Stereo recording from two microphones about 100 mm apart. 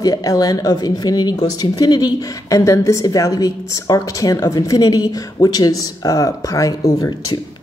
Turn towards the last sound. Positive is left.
turn(degrees=40)  # may be behind; listen again after turning